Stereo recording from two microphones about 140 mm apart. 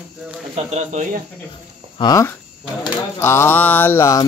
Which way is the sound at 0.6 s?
50° right (ahead or behind).